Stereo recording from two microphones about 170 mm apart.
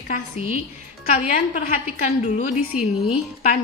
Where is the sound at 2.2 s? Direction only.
45° left (ahead or behind).